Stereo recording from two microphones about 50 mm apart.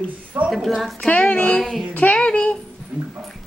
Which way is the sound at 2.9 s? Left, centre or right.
Right.